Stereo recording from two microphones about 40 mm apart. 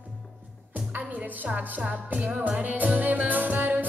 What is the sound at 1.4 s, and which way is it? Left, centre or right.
Music, right.